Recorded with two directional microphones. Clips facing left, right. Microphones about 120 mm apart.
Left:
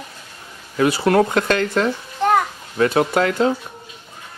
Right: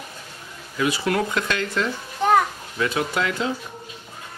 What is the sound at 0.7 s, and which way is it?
Speech, 45° left (ahead or behind).